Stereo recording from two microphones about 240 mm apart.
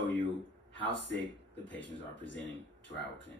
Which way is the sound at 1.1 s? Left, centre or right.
Left.